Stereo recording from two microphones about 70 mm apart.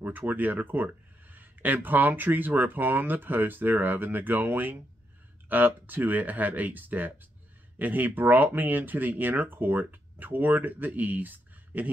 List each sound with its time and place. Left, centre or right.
0.0 s speech: right